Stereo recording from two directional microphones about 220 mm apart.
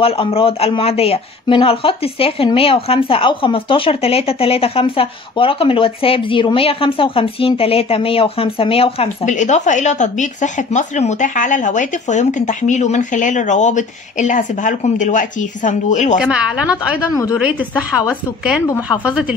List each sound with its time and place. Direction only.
0.0 s speech: 25° left (ahead or behind)
16.2 s a woman's voice: 5° right (ahead or behind)
17.1 s a woman's voice: 15° left (ahead or behind)
18.0 s a woman's voice: 5° right (ahead or behind)